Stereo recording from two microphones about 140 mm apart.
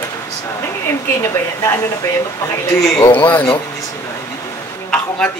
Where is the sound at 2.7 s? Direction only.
25° left (ahead or behind).